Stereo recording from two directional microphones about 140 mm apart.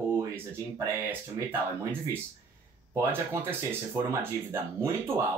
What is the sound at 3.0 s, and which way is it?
Speech, 15° right (ahead or behind).